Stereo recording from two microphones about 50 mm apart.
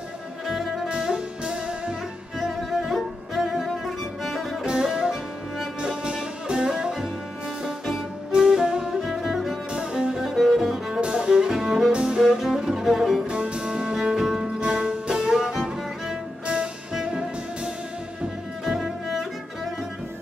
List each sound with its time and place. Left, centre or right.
0.5 s music: centre
0.8 s music: centre
4.6 s music: centre
8.3 s music: centre
9.0 s music: centre
9.7 s music: centre
10.2 s cello: centre
11.0 s music: centre
12.2 s music: centre
13.3 s music: centre
18.7 s cello: centre